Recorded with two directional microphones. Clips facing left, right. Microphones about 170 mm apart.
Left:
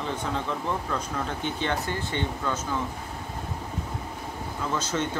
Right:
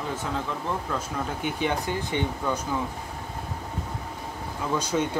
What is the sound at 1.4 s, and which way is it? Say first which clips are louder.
Speech: right 3 dB; 10° right (ahead or behind).